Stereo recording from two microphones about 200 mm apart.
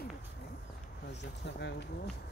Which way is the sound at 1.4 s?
60° left (ahead or behind).